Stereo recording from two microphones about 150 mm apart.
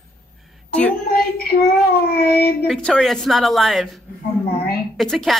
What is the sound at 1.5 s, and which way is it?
Speech, 90° left.